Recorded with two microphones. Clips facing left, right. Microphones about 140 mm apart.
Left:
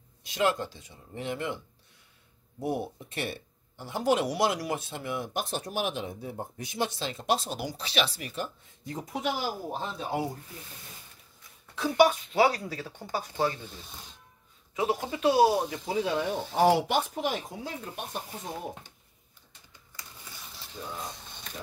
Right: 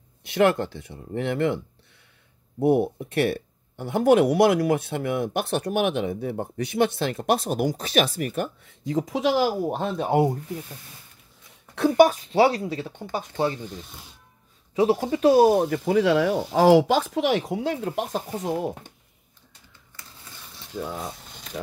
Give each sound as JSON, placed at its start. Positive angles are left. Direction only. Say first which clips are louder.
{"t": 0.2, "sound": "speech", "louder": "right 7 dB", "side_deg": -60}
{"t": 2.6, "sound": "speech", "louder": "right 11 dB", "side_deg": -60}
{"t": 11.7, "sound": "speech", "louder": "right 6 dB", "side_deg": -60}
{"t": 12.1, "sound": "speech", "louder": "right 5 dB", "side_deg": -35}
{"t": 14.8, "sound": "speech", "louder": "right 8 dB", "side_deg": -40}
{"t": 20.7, "sound": "speech", "louder": "right 8 dB", "side_deg": -65}